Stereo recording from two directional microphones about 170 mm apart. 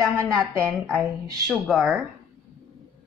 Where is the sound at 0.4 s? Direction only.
5° left (ahead or behind).